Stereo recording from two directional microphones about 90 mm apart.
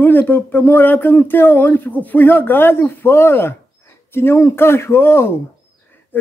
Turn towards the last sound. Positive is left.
turn(degrees=20)  # may be behind; listen again after turning